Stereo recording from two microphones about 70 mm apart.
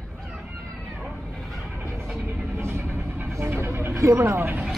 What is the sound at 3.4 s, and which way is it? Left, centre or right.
Vehicle, right.